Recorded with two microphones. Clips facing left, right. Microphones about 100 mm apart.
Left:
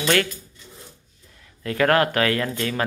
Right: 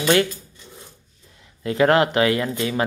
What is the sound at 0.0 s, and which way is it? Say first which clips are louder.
Speech: right 3 dB; 20° right (ahead or behind).